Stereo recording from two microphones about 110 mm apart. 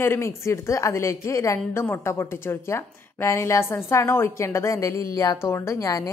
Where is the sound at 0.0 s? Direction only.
25° left (ahead or behind).